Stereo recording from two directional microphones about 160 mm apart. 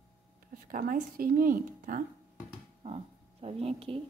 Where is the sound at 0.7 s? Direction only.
55° right (ahead or behind).